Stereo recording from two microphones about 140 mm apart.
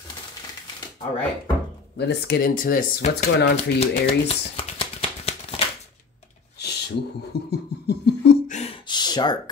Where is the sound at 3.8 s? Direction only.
45° left (ahead or behind).